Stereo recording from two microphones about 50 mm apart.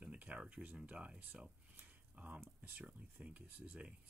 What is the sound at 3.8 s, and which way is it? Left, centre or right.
Speech, right.